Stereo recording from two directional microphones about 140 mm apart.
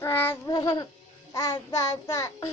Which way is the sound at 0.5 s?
30° left (ahead or behind).